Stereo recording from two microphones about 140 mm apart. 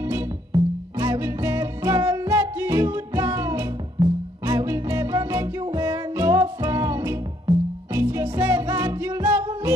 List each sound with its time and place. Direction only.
0.1 s music: 20° right (ahead or behind)